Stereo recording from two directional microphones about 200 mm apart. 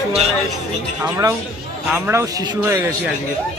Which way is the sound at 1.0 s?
15° right (ahead or behind).